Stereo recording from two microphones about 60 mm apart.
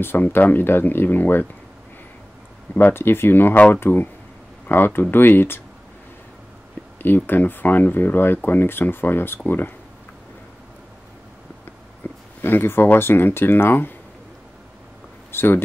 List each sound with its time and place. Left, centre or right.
0.0 s speech: left
2.9 s speech: left
3.5 s speech: left
7.0 s speech: left
12.0 s a sound: left
12.4 s speech: left
15.3 s speech: left